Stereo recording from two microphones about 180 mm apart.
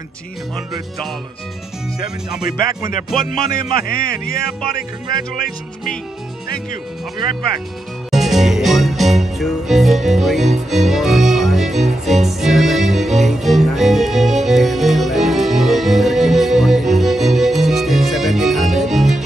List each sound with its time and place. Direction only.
3.3 s music: 50° left (ahead or behind)
8.1 s music: centre (ahead or behind)